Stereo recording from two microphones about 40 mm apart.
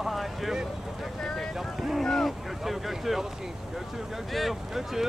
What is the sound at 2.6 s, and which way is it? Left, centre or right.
Speech, centre.